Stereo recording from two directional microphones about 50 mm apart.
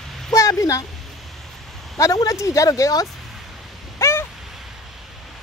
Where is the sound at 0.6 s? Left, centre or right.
Left.